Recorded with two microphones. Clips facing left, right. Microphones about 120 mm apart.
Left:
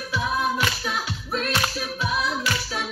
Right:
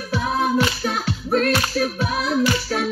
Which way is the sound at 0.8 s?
55° right (ahead or behind).